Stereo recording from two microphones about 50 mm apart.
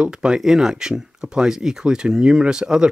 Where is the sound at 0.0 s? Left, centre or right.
Centre.